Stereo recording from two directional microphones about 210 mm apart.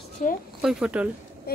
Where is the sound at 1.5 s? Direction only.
45° left (ahead or behind).